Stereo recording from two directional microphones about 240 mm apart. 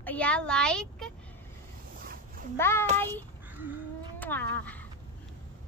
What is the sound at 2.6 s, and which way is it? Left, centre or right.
Speech, centre.